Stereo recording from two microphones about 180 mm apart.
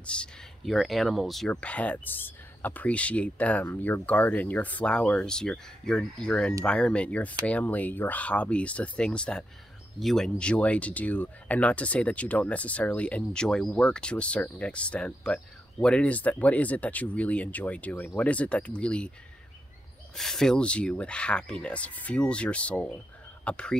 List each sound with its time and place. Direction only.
0.0 s speech: 5° left (ahead or behind)
20.2 s speech: centre (ahead or behind)